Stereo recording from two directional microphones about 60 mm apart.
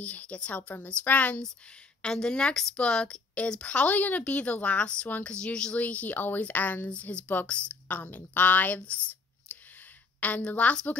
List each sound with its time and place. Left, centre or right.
0.0 s a woman's voice: left
2.0 s a woman's voice: centre; by 6.9 s left
6.9 s a woman's voice: centre
9.5 s a sound: left
10.2 s a woman's voice: left